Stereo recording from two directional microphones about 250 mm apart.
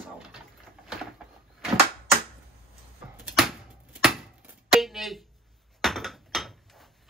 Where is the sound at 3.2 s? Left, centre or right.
Centre.